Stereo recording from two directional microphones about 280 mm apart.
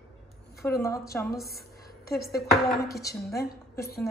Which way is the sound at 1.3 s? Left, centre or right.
Left.